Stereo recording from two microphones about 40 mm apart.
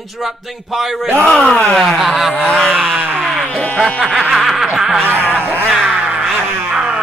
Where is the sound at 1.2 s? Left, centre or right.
Centre.